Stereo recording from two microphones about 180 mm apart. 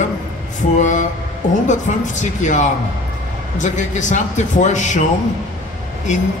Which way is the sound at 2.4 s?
45° left (ahead or behind).